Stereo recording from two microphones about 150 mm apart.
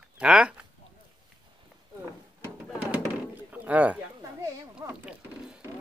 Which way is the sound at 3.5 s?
10° right (ahead or behind).